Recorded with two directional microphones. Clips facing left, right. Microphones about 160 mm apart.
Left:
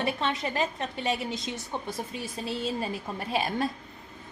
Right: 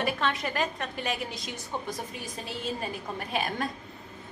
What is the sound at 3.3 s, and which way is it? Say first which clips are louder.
Speech: left 3 dB; 30° left (ahead or behind).